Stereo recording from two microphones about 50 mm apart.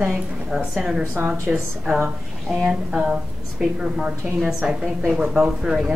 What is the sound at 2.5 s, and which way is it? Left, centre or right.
A woman's voice, centre.